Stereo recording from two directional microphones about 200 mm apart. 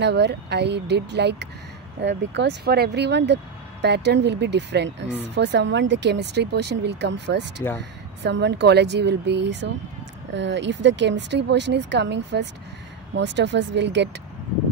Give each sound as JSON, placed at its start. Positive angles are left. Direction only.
{"t": 0.0, "sound": "speech", "side_deg": -60}